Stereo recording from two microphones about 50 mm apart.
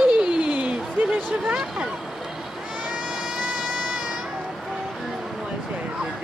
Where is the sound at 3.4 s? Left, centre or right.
Centre.